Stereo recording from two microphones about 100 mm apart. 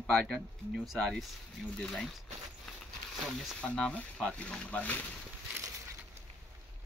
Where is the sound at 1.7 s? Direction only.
10° left (ahead or behind).